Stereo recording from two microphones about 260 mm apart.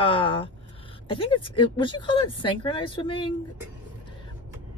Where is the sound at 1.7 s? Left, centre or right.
Centre.